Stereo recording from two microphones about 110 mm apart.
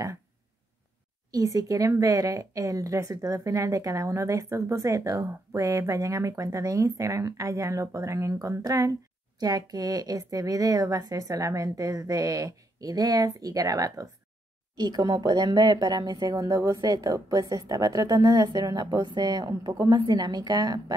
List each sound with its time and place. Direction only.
1.3 s a woman's voice: 35° right (ahead or behind)